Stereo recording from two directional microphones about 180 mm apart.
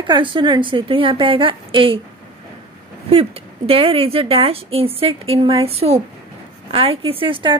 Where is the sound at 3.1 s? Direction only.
35° right (ahead or behind).